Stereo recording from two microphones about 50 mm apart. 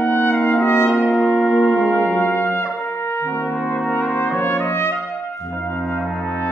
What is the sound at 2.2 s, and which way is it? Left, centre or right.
Brass instrument, left.